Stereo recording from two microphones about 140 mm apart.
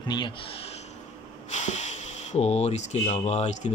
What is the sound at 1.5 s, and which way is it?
A man's voice, 55° left (ahead or behind).